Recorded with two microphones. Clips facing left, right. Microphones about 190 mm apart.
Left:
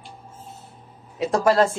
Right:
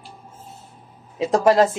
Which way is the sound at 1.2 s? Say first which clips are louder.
Right 2 dB; 20° right (ahead or behind).